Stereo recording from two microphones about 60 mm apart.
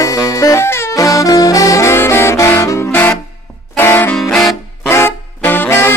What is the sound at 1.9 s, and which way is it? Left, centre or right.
Saxophone, left.